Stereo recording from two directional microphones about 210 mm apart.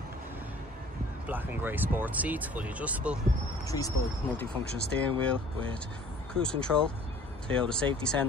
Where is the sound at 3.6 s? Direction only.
15° left (ahead or behind).